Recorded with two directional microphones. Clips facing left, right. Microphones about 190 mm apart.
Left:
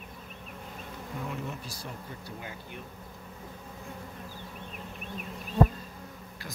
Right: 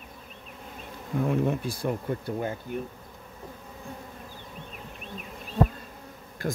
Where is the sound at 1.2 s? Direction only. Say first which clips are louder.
Right 14 dB; 55° right (ahead or behind).